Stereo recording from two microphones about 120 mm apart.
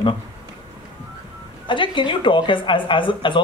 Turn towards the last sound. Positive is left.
turn(degrees=45)  # may be behind; listen again after turning